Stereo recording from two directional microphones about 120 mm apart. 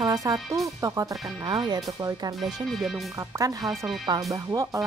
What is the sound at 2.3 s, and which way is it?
Speech, centre (ahead or behind).